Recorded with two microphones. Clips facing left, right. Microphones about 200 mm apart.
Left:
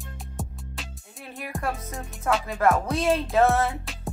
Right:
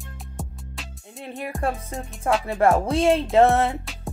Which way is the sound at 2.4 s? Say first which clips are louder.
Right 4 dB; 30° right (ahead or behind).